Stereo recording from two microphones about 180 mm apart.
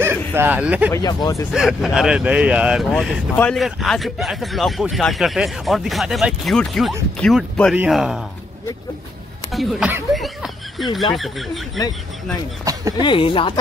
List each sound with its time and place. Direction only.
0.0 s speech: 10° right (ahead or behind)
0.9 s speech: 20° left (ahead or behind)
1.5 s speech: centre (ahead or behind)
9.5 s snicker: centre (ahead or behind)
11.1 s speech: centre (ahead or behind)
12.7 s a sound: 20° right (ahead or behind)
13.0 s speech: 30° left (ahead or behind)